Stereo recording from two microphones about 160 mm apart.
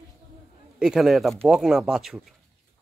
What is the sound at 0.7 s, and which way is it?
Speech, centre (ahead or behind).